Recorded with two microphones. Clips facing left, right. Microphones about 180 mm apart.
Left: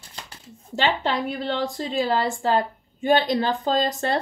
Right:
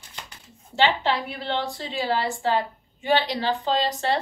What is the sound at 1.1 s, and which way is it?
A woman's voice, 45° left (ahead or behind).